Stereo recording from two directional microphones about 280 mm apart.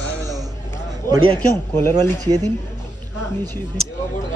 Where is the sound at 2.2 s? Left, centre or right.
Centre.